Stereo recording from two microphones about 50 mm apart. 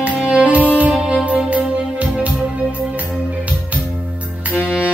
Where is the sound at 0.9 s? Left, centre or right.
Right.